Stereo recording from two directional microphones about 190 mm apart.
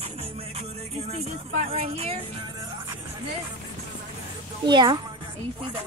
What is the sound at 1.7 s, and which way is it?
Speech, 30° right (ahead or behind).